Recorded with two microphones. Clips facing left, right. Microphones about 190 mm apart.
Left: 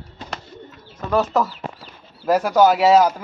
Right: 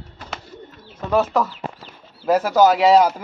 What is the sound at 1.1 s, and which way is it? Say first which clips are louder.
Speech: even; centre (ahead or behind).